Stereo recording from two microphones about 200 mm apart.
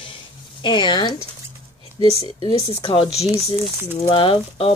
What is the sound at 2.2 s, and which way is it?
Speech, 30° left (ahead or behind).